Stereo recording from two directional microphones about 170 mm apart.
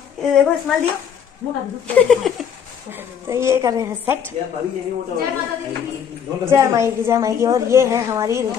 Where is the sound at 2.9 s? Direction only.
15° right (ahead or behind).